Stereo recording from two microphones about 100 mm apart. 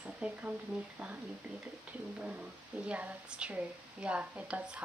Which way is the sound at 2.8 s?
10° right (ahead or behind).